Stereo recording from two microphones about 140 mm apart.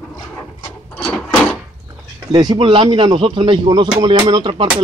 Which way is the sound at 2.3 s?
35° right (ahead or behind).